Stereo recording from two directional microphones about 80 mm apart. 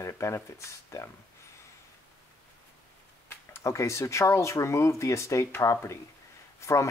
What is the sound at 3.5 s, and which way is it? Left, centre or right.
Speech, left.